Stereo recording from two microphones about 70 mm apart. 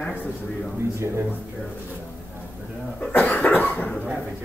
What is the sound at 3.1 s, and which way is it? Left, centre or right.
Cough, left.